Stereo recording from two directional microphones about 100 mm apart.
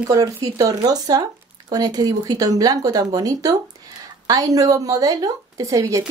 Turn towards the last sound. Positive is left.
turn(degrees=-35)  # may be behind; listen again after turning